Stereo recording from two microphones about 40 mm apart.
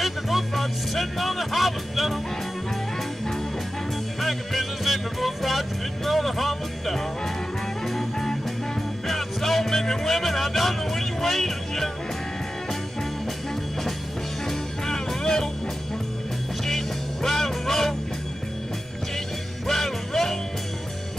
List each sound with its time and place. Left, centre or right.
0.0 s music: centre
4.2 s music: centre
14.5 s music: centre
16.6 s music: centre
19.1 s music: centre